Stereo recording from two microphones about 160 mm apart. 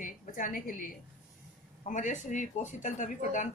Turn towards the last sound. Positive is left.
turn(degrees=50)  # may be behind; listen again after turning